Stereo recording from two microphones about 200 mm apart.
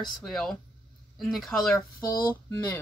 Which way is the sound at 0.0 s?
Centre (ahead or behind).